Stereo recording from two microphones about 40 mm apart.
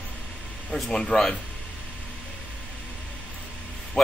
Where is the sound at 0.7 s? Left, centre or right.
Centre.